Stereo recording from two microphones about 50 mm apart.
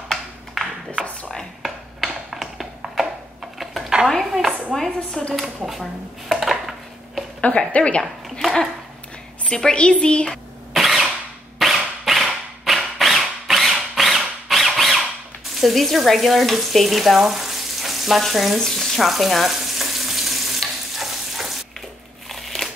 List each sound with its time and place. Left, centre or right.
0.1 s a sound: centre
4.1 s a woman's voice: centre
4.5 s speech: right
4.7 s a woman's voice: centre
5.7 s dishes: centre
7.4 s a woman's voice: left
8.0 s speech: centre
9.8 s a woman's voice: left
10.7 s a sound: centre
15.6 s frying: centre
18.9 s stir: centre
22.3 s crumpling: centre